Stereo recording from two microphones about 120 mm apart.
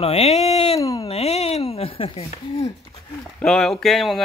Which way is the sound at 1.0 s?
60° left (ahead or behind).